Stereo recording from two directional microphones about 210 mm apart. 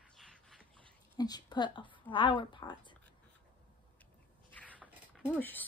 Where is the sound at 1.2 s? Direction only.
20° left (ahead or behind).